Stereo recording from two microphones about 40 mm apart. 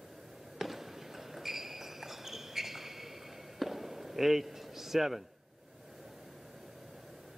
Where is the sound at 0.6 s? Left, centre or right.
Centre.